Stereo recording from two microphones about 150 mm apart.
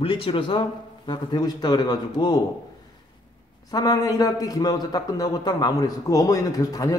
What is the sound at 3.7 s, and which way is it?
A man's voice, 25° left (ahead or behind).